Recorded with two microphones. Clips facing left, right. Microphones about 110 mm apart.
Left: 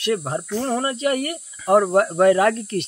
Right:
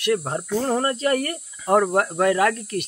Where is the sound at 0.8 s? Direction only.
10° left (ahead or behind).